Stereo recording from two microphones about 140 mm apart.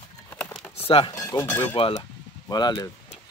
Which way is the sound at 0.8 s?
40° left (ahead or behind).